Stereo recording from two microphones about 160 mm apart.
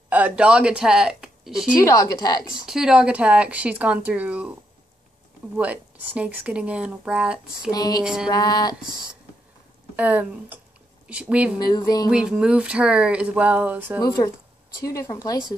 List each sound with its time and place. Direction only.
0.1 s speech: 10° right (ahead or behind)
1.8 s a woman's voice: 20° left (ahead or behind)
2.6 s speech: 5° right (ahead or behind)
5.6 s speech: 10° right (ahead or behind)
7.7 s a woman's voice: 25° left (ahead or behind)
8.0 s music: 5° right (ahead or behind)
8.3 s a woman's voice: 25° left (ahead or behind)
9.9 s speech: 10° right (ahead or behind)
11.6 s a woman's voice: 25° left (ahead or behind)
12.1 s speech: 5° right (ahead or behind)
14.0 s a woman's voice: 25° left (ahead or behind)